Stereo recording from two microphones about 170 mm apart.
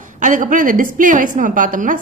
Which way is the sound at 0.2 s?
50° right (ahead or behind).